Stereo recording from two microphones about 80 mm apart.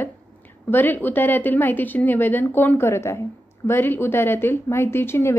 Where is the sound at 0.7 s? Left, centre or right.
Left.